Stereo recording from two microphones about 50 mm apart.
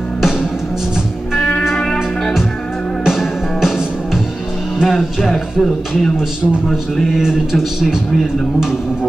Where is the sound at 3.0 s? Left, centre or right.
Centre.